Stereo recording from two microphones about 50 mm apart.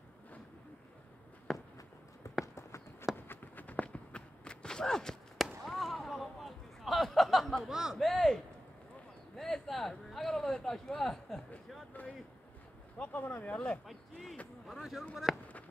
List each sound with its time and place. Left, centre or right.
1.5 s walk: centre
2.4 s run: left
3.3 s run: left
3.8 s walk: left
5.7 s a sound: centre
7.7 s speech: centre
8.0 s speech: centre
9.4 s a man's voice: centre
13.0 s speech: left
14.7 s speech: centre
15.3 s fireworks: centre